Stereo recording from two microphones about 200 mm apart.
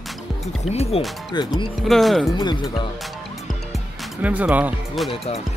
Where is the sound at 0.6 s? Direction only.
30° left (ahead or behind).